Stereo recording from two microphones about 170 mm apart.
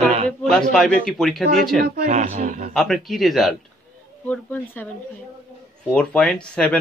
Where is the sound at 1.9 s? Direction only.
50° right (ahead or behind).